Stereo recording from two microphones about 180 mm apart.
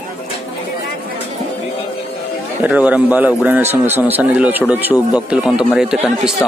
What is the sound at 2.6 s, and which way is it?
Speech, 10° right (ahead or behind).